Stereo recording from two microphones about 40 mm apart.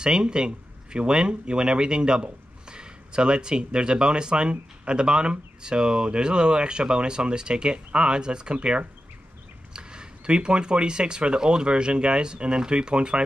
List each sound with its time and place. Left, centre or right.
0.0 s speech: right